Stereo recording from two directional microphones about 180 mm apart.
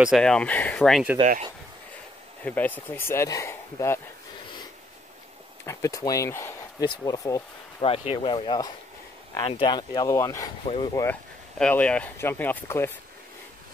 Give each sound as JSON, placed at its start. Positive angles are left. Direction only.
{"t": 0.0, "sound": "speech", "side_deg": 0}
{"t": 1.2, "sound": "speech", "side_deg": -40}
{"t": 2.4, "sound": "speech", "side_deg": 10}
{"t": 5.7, "sound": "speech", "side_deg": 20}
{"t": 7.8, "sound": "speech", "side_deg": 30}
{"t": 10.6, "sound": "speech", "side_deg": 30}
{"t": 11.5, "sound": "speech", "side_deg": 5}